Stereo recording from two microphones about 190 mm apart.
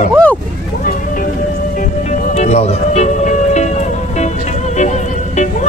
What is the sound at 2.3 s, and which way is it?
Music, 35° left (ahead or behind).